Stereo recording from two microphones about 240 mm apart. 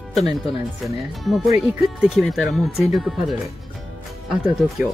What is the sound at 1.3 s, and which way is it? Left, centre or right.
Speech, centre.